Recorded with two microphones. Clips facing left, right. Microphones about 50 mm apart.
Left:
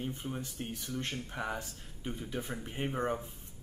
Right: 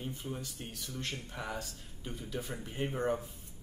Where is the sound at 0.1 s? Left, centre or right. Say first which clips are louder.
Left 2 dB; left.